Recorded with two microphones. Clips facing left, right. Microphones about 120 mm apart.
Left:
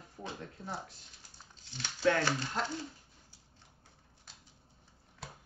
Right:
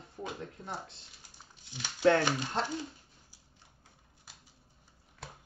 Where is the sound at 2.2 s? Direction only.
15° right (ahead or behind).